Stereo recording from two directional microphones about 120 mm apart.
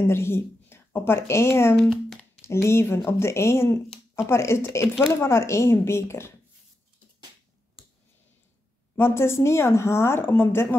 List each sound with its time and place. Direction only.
0.1 s speech: 20° left (ahead or behind)
1.8 s speech: centre (ahead or behind)
2.4 s speech: 20° left (ahead or behind)
8.9 s speech: 20° left (ahead or behind)